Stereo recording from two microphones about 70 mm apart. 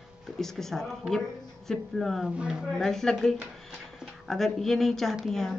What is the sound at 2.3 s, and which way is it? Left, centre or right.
Speech, centre.